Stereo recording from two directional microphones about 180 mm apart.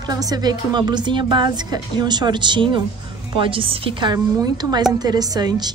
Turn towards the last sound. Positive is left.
turn(degrees=-20)  # may be behind; listen again after turning